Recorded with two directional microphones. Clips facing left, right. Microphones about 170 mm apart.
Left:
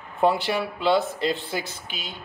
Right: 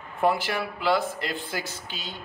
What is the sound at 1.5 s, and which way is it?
Speech, 15° left (ahead or behind).